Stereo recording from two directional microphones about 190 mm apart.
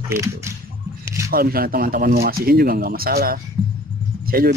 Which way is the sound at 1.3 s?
50° right (ahead or behind).